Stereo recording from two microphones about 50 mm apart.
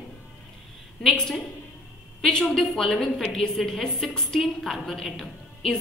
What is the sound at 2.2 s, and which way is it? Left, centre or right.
A woman's voice, centre.